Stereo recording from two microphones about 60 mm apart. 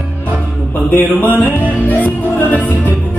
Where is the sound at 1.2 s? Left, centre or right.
Left.